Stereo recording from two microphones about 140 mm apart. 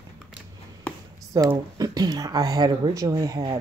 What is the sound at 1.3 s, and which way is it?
Speech, 25° right (ahead or behind).